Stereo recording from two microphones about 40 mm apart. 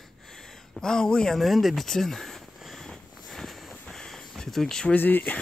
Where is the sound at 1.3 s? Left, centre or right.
Centre.